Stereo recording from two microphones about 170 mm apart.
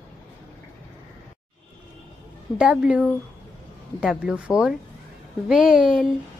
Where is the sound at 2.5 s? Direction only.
5° right (ahead or behind).